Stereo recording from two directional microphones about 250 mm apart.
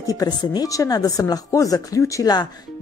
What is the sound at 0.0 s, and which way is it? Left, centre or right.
Speech, centre.